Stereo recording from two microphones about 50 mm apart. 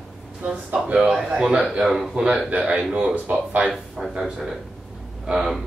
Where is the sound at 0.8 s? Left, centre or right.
Right.